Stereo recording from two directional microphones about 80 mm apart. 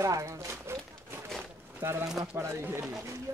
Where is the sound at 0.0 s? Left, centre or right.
Right.